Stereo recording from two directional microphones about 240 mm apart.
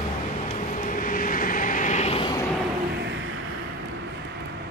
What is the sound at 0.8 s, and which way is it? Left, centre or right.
Vehicle, left.